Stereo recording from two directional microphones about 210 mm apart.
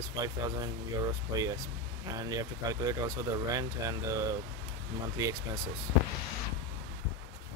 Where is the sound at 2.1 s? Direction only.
15° right (ahead or behind).